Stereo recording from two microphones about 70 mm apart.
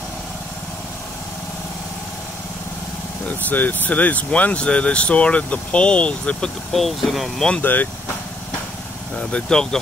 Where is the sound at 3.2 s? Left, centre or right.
Left.